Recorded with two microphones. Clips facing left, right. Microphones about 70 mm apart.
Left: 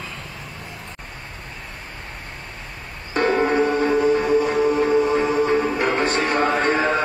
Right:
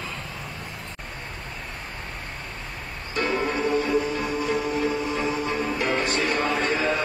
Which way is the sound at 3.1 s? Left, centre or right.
Left.